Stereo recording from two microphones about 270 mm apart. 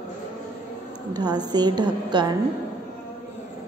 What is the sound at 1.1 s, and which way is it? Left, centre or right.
A woman's voice, centre.